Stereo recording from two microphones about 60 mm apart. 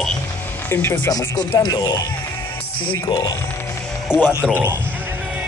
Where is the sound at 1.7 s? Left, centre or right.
Left.